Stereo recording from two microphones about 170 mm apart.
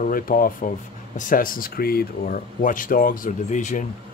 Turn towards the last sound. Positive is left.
turn(degrees=50)  # may be behind; listen again after turning